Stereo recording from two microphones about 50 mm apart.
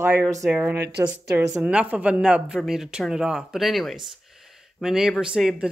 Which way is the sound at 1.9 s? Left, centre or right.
Right.